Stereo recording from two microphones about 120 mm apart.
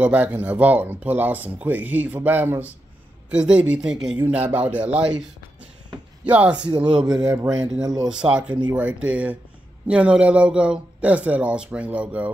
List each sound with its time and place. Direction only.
0.0 s speech: 15° right (ahead or behind)
6.2 s speech: 10° right (ahead or behind)
7.2 s speech: 30° right (ahead or behind)
8.1 s speech: 10° right (ahead or behind)